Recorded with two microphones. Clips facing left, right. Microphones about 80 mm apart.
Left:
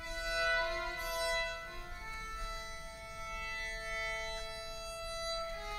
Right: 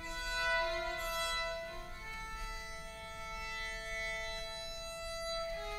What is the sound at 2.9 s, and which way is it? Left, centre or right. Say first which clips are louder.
Civil defense siren: left 1 dB; centre.